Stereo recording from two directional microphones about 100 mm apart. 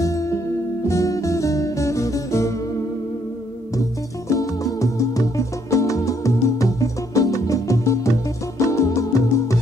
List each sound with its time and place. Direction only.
0.0 s music: 35° left (ahead or behind)
4.3 s music: 35° left (ahead or behind)